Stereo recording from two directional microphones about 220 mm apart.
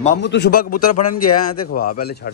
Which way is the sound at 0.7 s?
90° left.